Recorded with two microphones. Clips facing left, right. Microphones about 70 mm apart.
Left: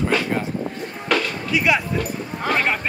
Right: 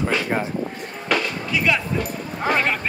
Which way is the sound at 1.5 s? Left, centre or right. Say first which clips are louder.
Left 2 dB; centre.